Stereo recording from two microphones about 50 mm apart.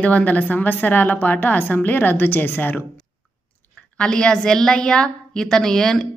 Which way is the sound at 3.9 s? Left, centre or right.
Centre.